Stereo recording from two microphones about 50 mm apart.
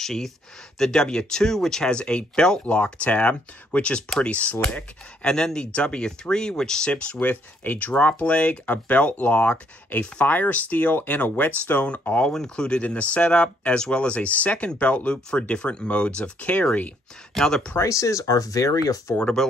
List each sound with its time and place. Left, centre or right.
0.0 s speech: centre
2.6 s speech: left
4.6 s speech: centre
7.2 s speech: left
12.3 s speech: centre; by 16.6 s left
17.3 s speech: centre
17.7 s speech: left